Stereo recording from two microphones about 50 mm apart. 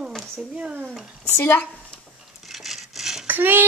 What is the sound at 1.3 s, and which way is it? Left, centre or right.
Speech, left.